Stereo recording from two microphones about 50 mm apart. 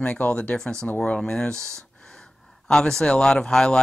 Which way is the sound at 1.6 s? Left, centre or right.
Right.